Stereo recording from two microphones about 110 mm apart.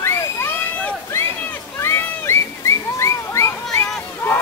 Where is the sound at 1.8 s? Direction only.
20° left (ahead or behind).